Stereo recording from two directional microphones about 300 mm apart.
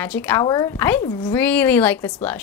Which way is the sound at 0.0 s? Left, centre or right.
Centre.